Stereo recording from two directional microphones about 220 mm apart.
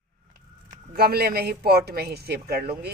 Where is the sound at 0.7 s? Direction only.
45° right (ahead or behind).